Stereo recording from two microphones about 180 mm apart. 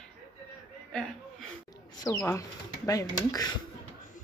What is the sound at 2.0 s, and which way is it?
Speech, 15° left (ahead or behind).